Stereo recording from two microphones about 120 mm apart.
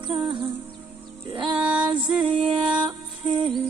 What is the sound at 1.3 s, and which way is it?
Music, 45° right (ahead or behind).